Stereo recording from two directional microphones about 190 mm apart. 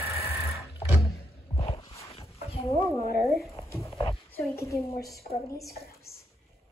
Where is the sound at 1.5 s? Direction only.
25° left (ahead or behind).